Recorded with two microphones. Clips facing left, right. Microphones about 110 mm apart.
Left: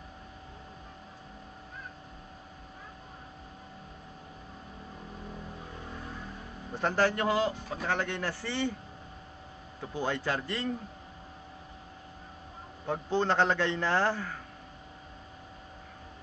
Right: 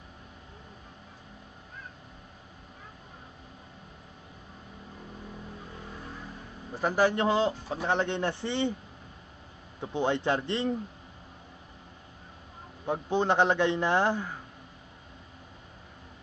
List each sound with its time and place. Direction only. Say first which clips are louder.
6.7 s a man's voice: right 2 dB; 5° right (ahead or behind)
9.8 s a man's voice: right 4 dB; 20° right (ahead or behind)
12.8 s a man's voice: right 2 dB; 15° right (ahead or behind)